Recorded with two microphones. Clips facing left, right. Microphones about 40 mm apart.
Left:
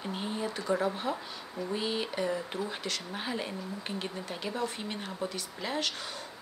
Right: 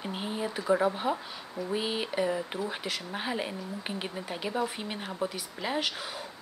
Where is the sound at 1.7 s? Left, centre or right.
Centre.